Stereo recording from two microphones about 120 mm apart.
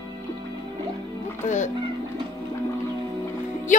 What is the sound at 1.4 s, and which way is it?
Speech, 90° left.